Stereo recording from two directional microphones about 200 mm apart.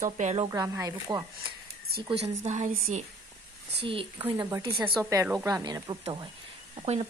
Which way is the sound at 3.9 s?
25° right (ahead or behind).